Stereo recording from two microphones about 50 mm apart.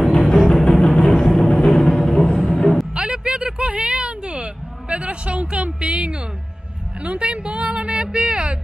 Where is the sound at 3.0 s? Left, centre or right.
Centre.